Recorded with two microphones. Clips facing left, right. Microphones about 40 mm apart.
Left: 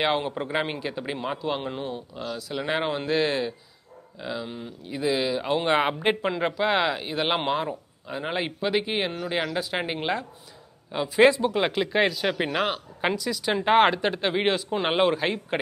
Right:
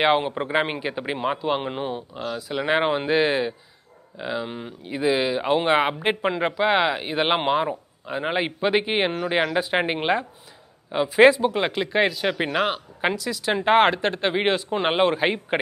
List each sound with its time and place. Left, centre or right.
0.0 s a man's voice: centre
5.7 s a man's voice: centre